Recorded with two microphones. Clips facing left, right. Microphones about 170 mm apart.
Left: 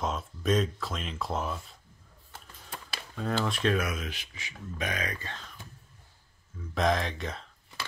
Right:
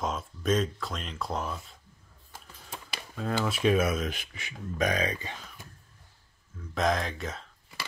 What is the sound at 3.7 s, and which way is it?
Speech, 30° right (ahead or behind).